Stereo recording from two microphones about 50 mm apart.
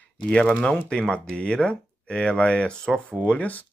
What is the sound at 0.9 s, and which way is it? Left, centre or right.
Speech, centre.